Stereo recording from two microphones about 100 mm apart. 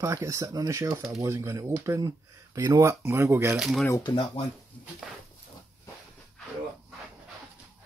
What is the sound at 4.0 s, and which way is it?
Speech, 60° left (ahead or behind).